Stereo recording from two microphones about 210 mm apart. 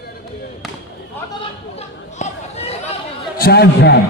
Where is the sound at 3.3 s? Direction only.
50° left (ahead or behind).